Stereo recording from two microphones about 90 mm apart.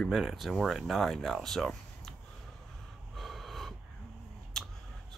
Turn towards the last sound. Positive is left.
turn(degrees=5)  # may be behind; listen again after turning